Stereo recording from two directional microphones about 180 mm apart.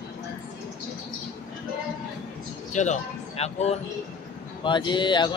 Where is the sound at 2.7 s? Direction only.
40° left (ahead or behind).